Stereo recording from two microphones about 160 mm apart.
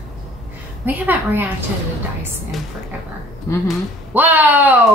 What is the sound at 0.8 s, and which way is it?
Speech, 10° right (ahead or behind).